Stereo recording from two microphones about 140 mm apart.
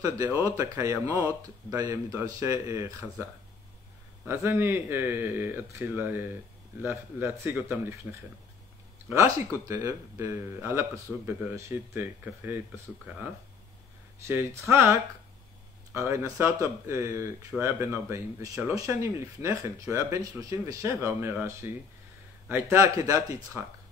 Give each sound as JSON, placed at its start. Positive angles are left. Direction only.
{"t": 0.3, "sound": "speech", "side_deg": 20}
{"t": 0.6, "sound": "speech", "side_deg": -20}
{"t": 4.3, "sound": "speech", "side_deg": -15}
{"t": 14.2, "sound": "speech", "side_deg": -20}